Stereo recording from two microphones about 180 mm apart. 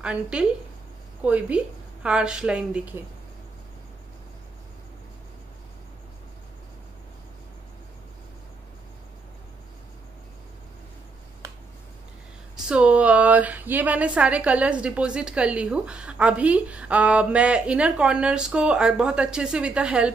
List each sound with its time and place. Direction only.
0.0 s a woman's voice: 5° right (ahead or behind)
11.4 s a sound: 20° right (ahead or behind)
12.6 s a woman's voice: 5° right (ahead or behind)